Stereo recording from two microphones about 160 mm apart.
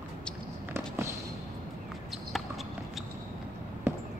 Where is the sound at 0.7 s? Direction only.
15° right (ahead or behind).